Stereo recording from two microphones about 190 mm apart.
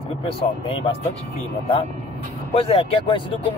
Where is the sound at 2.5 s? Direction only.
30° left (ahead or behind).